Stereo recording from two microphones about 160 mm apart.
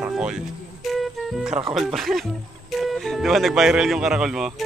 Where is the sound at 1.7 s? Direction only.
Centre (ahead or behind).